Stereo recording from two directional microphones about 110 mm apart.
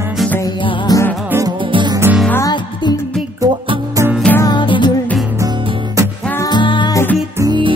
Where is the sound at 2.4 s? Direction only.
45° left (ahead or behind).